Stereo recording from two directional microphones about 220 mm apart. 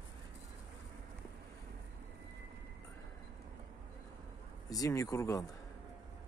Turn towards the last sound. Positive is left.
turn(degrees=15)  # may be behind; listen again after turning